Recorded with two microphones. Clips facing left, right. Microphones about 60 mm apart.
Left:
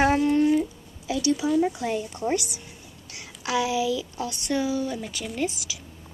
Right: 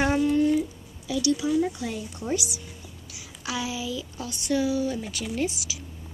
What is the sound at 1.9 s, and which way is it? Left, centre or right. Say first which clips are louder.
Speech: left 4 dB; left.